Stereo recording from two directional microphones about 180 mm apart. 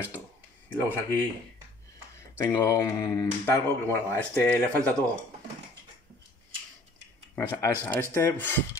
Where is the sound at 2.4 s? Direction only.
15° left (ahead or behind).